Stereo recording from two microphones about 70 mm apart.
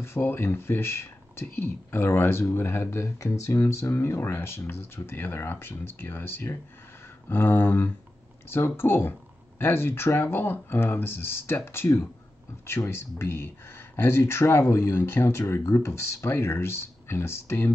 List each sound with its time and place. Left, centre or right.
0.0 s speech: left